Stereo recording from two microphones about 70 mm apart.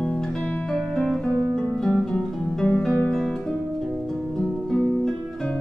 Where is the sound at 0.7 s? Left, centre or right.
Centre.